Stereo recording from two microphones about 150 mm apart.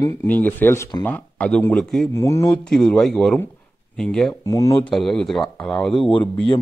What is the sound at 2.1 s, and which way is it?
Speech, 20° left (ahead or behind).